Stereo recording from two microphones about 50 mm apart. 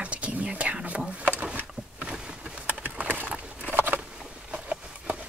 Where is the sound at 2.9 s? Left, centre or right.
Right.